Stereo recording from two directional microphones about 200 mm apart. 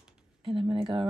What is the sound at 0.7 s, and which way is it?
Speech, 25° right (ahead or behind).